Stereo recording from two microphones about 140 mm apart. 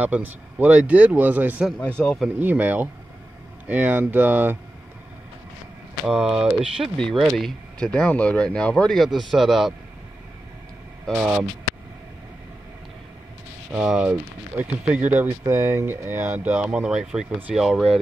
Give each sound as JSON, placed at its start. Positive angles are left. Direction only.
{"t": 0.0, "sound": "speech", "side_deg": -10}
{"t": 1.8, "sound": "speech", "side_deg": 10}
{"t": 2.2, "sound": "speech", "side_deg": -10}
{"t": 6.0, "sound": "speech", "side_deg": -5}
{"t": 7.0, "sound": "speech", "side_deg": 5}
{"t": 11.1, "sound": "speech", "side_deg": -5}
{"t": 14.6, "sound": "speech", "side_deg": -10}